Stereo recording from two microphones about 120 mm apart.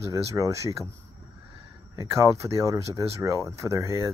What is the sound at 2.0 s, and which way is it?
Speech, 25° right (ahead or behind).